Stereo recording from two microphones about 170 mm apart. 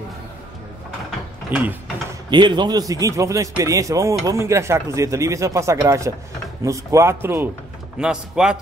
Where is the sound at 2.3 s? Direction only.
25° right (ahead or behind).